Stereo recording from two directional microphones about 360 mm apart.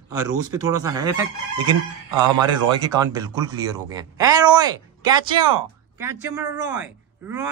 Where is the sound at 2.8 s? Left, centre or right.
Centre.